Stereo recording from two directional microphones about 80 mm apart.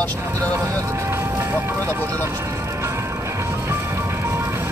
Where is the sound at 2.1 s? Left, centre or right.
Right.